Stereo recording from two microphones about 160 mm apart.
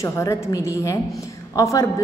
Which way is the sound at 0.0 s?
20° left (ahead or behind).